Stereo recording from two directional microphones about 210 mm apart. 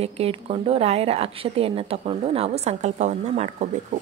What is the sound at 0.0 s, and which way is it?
A woman's voice, 30° right (ahead or behind).